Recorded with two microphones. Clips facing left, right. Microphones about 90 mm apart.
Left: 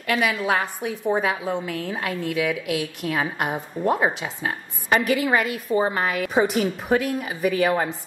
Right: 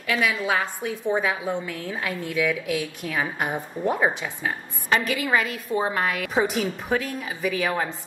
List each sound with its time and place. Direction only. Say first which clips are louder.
0.0 s a woman's voice: left 2 dB; 5° left (ahead or behind)
2.2 s a woman's voice: even; 65° left (ahead or behind)
3.0 s a woman's voice: left 2 dB; 5° left (ahead or behind)